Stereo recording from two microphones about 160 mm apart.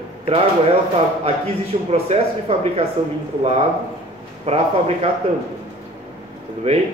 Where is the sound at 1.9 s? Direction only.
40° right (ahead or behind).